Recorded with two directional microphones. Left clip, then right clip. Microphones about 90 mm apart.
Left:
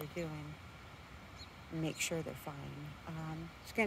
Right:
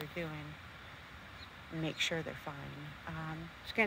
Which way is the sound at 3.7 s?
25° left (ahead or behind).